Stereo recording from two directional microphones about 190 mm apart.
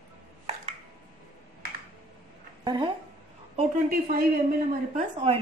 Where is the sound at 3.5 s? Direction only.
50° right (ahead or behind).